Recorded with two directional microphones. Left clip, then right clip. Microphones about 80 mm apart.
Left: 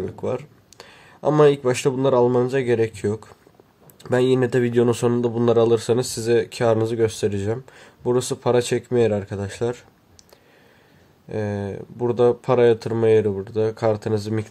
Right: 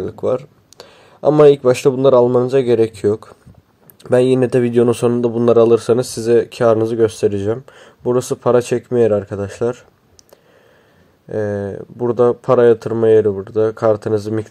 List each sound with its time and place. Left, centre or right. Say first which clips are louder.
0.0 s a sound: right 8 dB; right
1.4 s speech: right 7 dB; right
11.2 s speech: right 7 dB; centre
13.0 s speech: right 5 dB; centre
13.3 s speech: right 6 dB; centre